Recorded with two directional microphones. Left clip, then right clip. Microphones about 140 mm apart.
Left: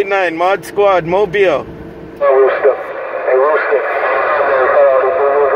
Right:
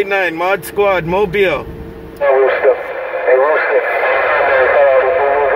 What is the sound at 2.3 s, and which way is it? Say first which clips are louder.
Speech: even; 30° left (ahead or behind).